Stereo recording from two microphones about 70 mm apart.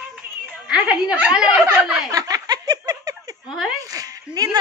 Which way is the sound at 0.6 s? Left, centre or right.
Centre.